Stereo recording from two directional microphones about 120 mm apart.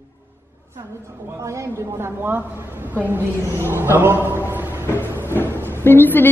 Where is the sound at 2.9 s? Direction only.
15° right (ahead or behind).